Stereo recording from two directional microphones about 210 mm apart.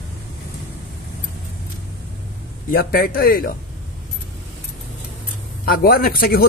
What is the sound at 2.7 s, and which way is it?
Speech, 45° left (ahead or behind).